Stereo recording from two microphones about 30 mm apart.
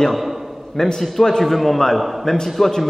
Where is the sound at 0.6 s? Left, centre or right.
Centre.